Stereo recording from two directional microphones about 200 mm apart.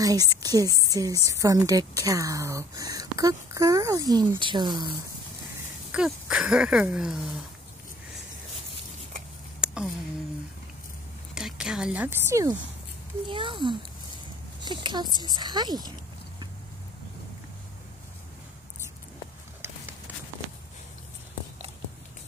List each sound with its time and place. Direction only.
0.0 s a woman's voice: 15° right (ahead or behind)
5.9 s speech: 5° right (ahead or behind)
9.6 s a sound: 5° right (ahead or behind)
11.3 s a woman's voice: 5° right (ahead or behind); by 15.9 s 20° right (ahead or behind)